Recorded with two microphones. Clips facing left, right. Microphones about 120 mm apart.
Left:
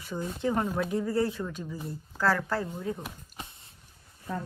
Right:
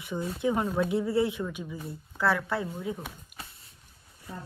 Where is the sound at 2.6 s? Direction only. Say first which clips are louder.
Even; 5° right (ahead or behind).